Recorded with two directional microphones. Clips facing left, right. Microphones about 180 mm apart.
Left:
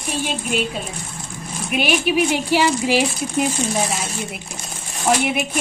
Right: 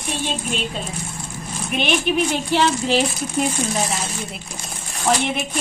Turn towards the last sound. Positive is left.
turn(degrees=10)  # may be behind; listen again after turning